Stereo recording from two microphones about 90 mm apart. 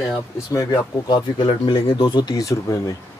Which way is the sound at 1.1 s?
60° left (ahead or behind).